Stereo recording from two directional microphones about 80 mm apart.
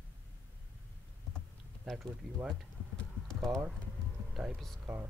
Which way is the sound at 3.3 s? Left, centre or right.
Centre.